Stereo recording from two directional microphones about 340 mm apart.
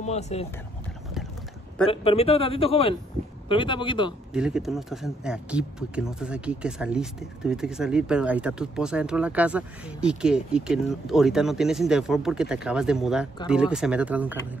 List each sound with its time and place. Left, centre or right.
0.0 s speech: centre
1.9 s a man's voice: centre
4.3 s speech: centre